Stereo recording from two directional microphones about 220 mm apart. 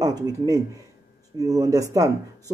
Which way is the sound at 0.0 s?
15° right (ahead or behind).